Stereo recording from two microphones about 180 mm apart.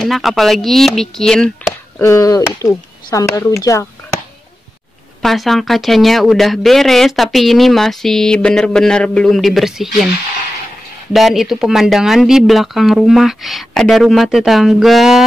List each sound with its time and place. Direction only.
0.0 s speech: centre (ahead or behind)
2.0 s speech: 15° left (ahead or behind)
5.2 s speech: centre (ahead or behind)
11.1 s speech: centre (ahead or behind)